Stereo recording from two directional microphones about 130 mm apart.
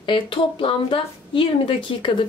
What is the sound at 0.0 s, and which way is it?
A woman's voice, 40° left (ahead or behind).